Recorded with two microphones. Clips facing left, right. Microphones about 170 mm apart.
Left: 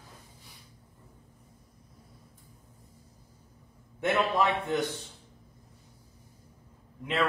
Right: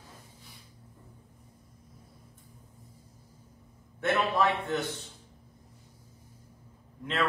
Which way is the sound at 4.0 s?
15° left (ahead or behind).